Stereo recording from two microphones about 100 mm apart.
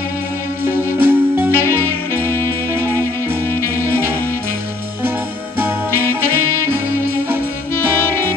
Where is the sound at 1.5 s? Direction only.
20° left (ahead or behind).